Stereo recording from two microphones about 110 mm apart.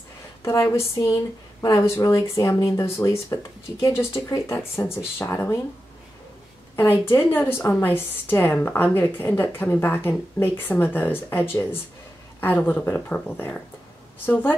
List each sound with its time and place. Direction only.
0.5 s speech: 25° left (ahead or behind)
6.8 s speech: 20° left (ahead or behind)